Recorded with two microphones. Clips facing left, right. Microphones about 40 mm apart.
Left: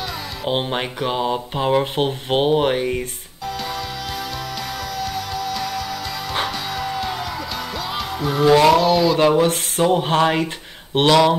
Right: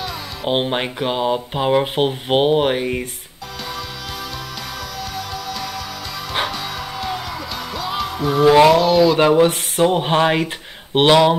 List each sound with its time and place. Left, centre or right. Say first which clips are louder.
0.5 s speech: right 3 dB; centre
5.1 s music: left 2 dB; centre
8.6 s speech: right 2 dB; centre
9.1 s speech: right 2 dB; centre
9.8 s music: right 1 dB; centre